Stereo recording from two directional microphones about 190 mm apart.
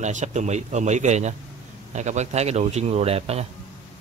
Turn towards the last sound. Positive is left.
turn(degrees=-30)  # may be behind; listen again after turning